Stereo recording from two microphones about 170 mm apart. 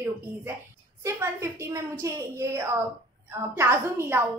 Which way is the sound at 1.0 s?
15° right (ahead or behind).